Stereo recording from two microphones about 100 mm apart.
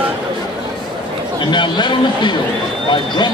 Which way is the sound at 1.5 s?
50° left (ahead or behind).